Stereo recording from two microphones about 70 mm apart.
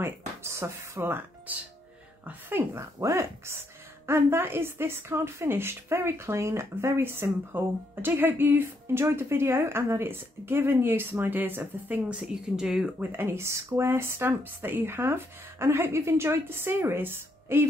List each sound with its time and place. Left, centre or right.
0.0 s a woman's voice: right; by 12.9 s centre
13.1 s a woman's voice: right